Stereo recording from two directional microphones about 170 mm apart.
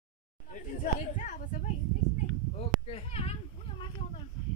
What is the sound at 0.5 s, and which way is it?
Chatter, 50° left (ahead or behind).